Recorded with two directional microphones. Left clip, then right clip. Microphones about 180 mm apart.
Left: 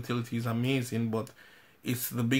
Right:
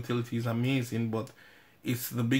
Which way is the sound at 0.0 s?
25° left (ahead or behind).